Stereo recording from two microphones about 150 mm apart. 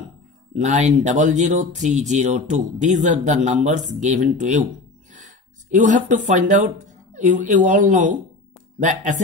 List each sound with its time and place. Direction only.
0.6 s speech: 50° right (ahead or behind)
5.1 s a sound: 55° right (ahead or behind)
7.2 s speech: 55° right (ahead or behind)